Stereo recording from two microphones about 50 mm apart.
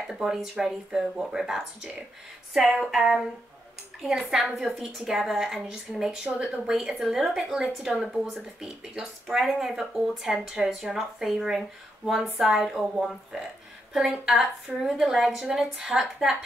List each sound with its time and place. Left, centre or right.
0.0 s speech: centre
6.2 s speech: right
6.7 s speech: centre
9.9 s speech: centre